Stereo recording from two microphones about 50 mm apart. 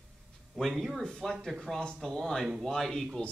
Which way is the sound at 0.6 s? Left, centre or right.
Centre.